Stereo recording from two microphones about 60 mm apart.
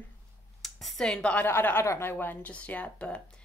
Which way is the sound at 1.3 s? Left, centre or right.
Left.